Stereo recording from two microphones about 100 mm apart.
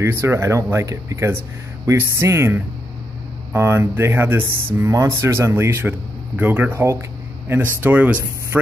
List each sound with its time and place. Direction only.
0.0 s speech: 25° right (ahead or behind)